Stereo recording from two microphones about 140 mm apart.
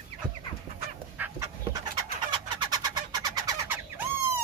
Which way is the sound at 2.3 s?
35° right (ahead or behind).